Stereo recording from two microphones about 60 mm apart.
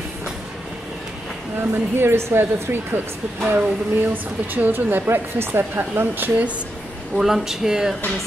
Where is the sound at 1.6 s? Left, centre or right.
Right.